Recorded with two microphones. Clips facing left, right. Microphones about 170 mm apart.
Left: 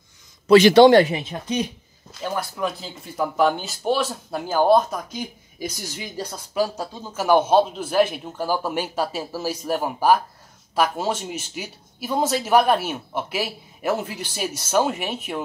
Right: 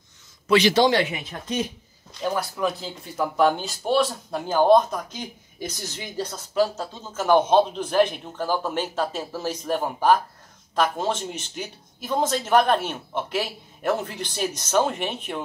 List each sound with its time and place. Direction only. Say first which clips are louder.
0.5 s a man's voice: left 7 dB; 55° left (ahead or behind)
2.2 s speech: right 1 dB; centre (ahead or behind)